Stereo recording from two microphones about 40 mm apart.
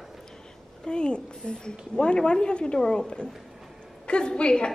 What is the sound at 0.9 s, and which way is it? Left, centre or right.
A woman's voice, left.